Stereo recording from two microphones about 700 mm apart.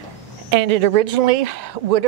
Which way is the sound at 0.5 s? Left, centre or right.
Right.